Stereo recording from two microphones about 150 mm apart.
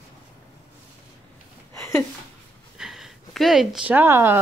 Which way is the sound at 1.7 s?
20° left (ahead or behind).